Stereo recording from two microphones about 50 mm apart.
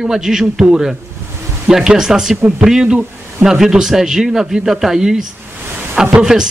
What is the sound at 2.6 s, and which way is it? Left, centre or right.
A man's voice, centre.